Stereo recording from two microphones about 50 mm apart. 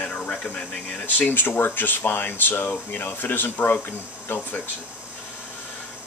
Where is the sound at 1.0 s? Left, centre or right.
Left.